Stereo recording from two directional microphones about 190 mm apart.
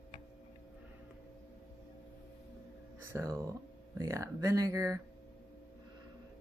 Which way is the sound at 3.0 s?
15° right (ahead or behind).